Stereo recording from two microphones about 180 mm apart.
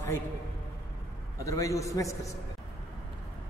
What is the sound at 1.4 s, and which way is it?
Speech, 15° left (ahead or behind).